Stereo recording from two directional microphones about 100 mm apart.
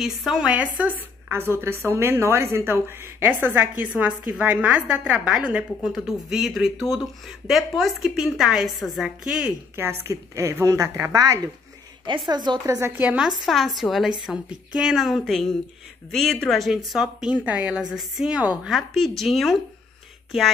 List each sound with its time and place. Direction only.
0.0 s a woman's voice: centre (ahead or behind)
1.3 s a woman's voice: 25° right (ahead or behind)
3.9 s a woman's voice: 5° right (ahead or behind)
9.8 s a woman's voice: 25° right (ahead or behind)
12.3 s a woman's voice: 45° right (ahead or behind)
12.6 s a woman's voice: 30° right (ahead or behind)
12.9 s a woman's voice: 15° right (ahead or behind)
13.4 s a woman's voice: centre (ahead or behind)